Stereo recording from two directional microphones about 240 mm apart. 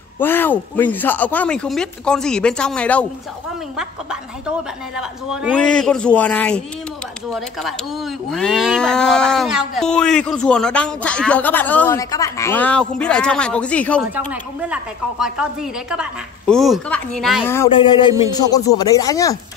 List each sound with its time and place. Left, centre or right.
0.2 s cattle: centre
14.1 s cattle: centre
17.7 s speech: centre